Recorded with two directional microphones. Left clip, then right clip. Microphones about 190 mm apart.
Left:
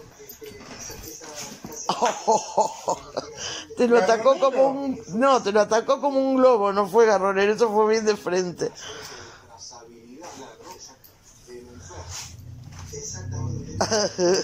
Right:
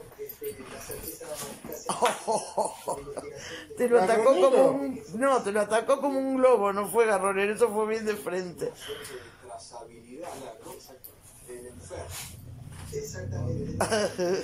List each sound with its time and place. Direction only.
1.9 s a sound: 5° left (ahead or behind)
5.2 s speech: 5° left (ahead or behind)
13.7 s speech: 5° left (ahead or behind)